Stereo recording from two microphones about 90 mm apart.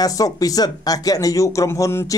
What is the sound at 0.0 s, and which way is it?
Speech, 40° left (ahead or behind).